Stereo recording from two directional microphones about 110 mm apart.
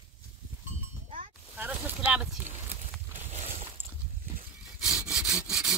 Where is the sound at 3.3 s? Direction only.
65° right (ahead or behind).